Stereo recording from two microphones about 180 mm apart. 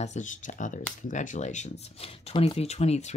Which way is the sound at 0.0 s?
40° left (ahead or behind).